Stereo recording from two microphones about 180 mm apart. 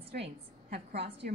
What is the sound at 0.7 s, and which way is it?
Speech, 65° right (ahead or behind).